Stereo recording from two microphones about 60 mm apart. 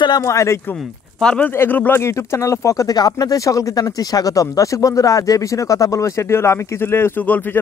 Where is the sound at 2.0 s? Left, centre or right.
Left.